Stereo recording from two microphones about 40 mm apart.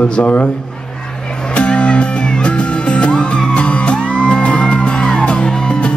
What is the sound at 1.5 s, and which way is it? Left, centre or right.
Music, left.